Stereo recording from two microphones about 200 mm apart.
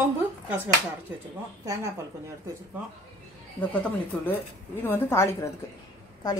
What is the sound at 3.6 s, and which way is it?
A woman's voice, 10° left (ahead or behind).